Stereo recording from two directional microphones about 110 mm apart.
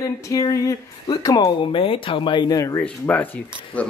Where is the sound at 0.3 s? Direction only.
30° left (ahead or behind).